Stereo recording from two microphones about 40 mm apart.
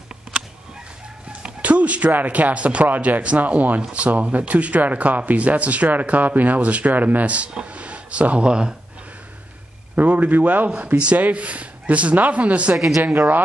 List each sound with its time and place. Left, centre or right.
1.6 s a sound: right
2.1 s speech: right
9.9 s speech: right
12.7 s speech: centre